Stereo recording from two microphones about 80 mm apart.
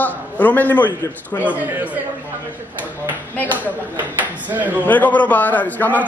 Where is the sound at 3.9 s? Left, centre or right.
Right.